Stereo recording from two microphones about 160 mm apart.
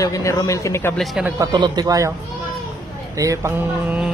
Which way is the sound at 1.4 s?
25° right (ahead or behind).